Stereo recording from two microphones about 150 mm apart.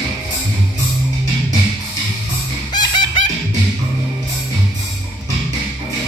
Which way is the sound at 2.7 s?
30° left (ahead or behind).